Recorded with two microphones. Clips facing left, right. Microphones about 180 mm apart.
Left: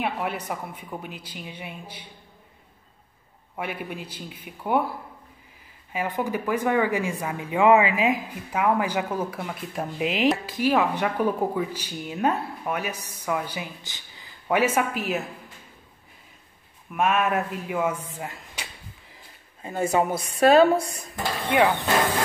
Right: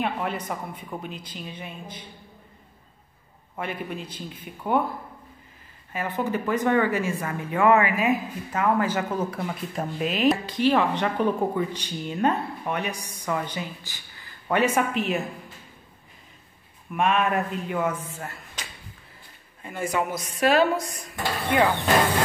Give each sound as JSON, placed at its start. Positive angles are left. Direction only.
{"t": 0.0, "sound": "speech", "side_deg": 10}
{"t": 3.5, "sound": "speech", "side_deg": 10}
{"t": 5.9, "sound": "speech", "side_deg": 15}
{"t": 13.8, "sound": "speech", "side_deg": 20}
{"t": 16.9, "sound": "speech", "side_deg": 5}
{"t": 18.2, "sound": "a sound", "side_deg": 15}
{"t": 19.6, "sound": "a woman's voice", "side_deg": 25}
{"t": 21.5, "sound": "speech", "side_deg": 15}